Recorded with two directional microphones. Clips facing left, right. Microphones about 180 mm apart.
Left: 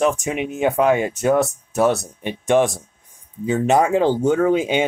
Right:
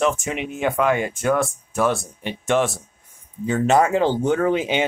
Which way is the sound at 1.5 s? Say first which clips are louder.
Left 3 dB; 40° left (ahead or behind).